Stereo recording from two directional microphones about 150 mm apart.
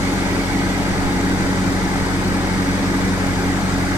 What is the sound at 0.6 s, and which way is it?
Vehicle, 15° right (ahead or behind).